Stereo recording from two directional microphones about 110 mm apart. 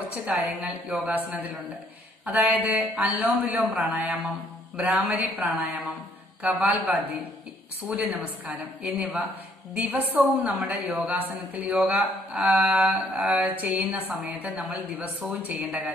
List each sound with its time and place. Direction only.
0.1 s a woman's voice: 15° right (ahead or behind)